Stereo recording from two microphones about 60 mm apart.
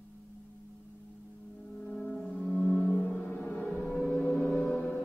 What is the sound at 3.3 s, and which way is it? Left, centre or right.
Music, centre.